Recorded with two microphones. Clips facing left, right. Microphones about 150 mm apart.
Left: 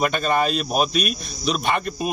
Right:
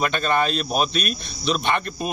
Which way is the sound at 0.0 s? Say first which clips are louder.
Left 1 dB; 5° left (ahead or behind).